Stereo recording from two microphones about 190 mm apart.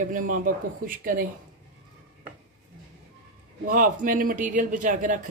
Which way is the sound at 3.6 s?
45° right (ahead or behind).